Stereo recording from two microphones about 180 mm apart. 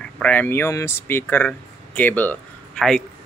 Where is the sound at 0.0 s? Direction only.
5° left (ahead or behind).